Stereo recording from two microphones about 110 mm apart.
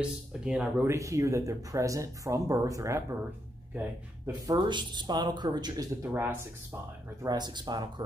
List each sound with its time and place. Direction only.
0.0 s speech: 10° right (ahead or behind)
0.8 s speech: 30° right (ahead or behind)
4.5 s speech: 45° right (ahead or behind); by 6.3 s 25° right (ahead or behind)
7.2 s speech: 40° right (ahead or behind)